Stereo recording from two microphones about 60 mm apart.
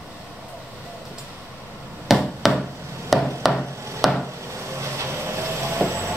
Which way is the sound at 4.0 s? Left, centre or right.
Centre.